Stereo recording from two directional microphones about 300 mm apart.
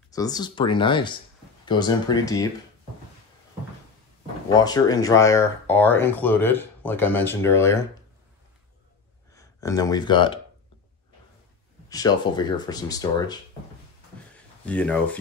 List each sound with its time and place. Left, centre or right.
0.1 s speech: centre
4.5 s speech: centre
9.3 s speech: centre
11.9 s speech: centre
14.7 s speech: centre